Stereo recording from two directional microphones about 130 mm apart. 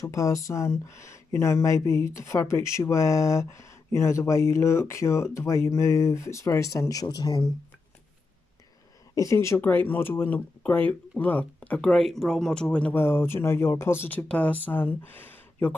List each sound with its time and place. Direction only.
0.0 s speech: 25° left (ahead or behind)
9.1 s speech: 25° left (ahead or behind)